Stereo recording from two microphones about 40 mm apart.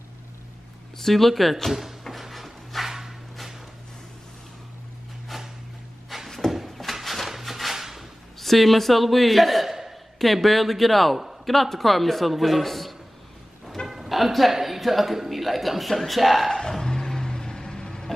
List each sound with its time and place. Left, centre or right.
0.9 s speech: centre
2.0 s drawer open or close: centre
6.0 s a sound: centre
7.7 s drawer open or close: centre
8.4 s a man's voice: centre
16.4 s vehicle: centre